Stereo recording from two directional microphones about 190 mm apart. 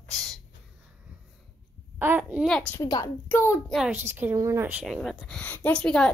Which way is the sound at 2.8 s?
20° left (ahead or behind).